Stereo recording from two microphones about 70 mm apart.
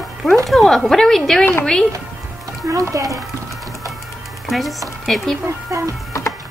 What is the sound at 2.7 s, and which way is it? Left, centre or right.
Speech, right.